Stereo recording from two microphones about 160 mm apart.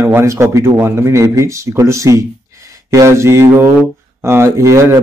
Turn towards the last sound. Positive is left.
turn(degrees=-20)  # may be behind; listen again after turning